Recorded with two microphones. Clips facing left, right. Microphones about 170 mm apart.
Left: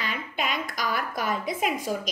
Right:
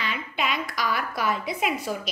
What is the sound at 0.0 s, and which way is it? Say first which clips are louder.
A woman's voice: right 1 dB; 45° left (ahead or behind).